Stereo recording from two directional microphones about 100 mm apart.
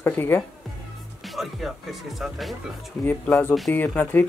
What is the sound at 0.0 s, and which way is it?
Speech, 20° left (ahead or behind).